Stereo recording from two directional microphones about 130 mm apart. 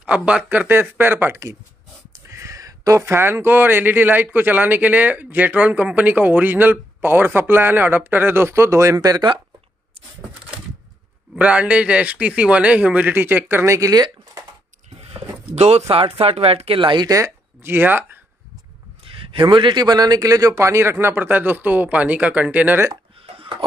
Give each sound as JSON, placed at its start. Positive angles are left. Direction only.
{"t": 0.0, "sound": "speech", "side_deg": -10}
{"t": 11.3, "sound": "speech", "side_deg": -10}
{"t": 15.0, "sound": "a sound", "side_deg": -50}
{"t": 15.5, "sound": "speech", "side_deg": -55}
{"t": 19.0, "sound": "speech", "side_deg": -40}
{"t": 23.2, "sound": "a sound", "side_deg": -45}